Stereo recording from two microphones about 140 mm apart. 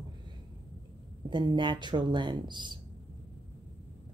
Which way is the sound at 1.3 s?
35° right (ahead or behind).